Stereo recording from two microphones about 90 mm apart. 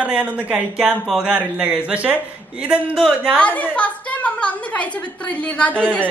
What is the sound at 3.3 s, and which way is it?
A woman's voice, 15° left (ahead or behind).